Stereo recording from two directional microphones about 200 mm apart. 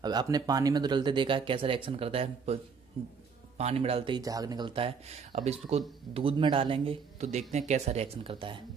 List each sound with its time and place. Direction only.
0.0 s speech: 20° right (ahead or behind)